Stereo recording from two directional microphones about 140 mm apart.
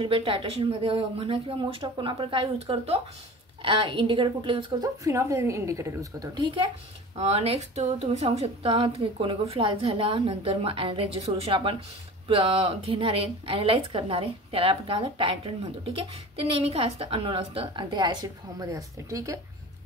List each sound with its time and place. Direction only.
0.0 s a woman's voice: 40° right (ahead or behind)
7.2 s a woman's voice: 45° right (ahead or behind); by 19.4 s 25° right (ahead or behind)